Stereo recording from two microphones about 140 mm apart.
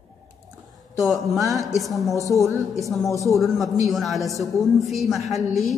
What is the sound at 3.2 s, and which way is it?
A woman's voice, centre (ahead or behind).